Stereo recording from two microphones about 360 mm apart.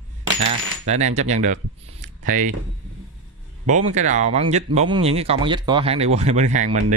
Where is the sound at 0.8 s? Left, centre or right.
Centre.